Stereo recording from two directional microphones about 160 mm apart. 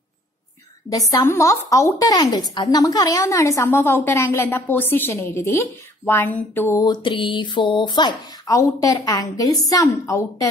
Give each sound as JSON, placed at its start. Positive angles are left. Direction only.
{"t": 0.8, "sound": "a woman's voice", "side_deg": 20}